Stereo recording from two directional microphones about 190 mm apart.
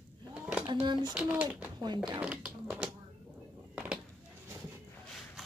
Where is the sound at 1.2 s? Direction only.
5° right (ahead or behind).